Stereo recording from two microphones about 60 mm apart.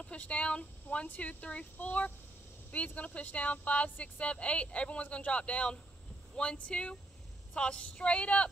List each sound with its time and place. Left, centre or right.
0.0 s speech: left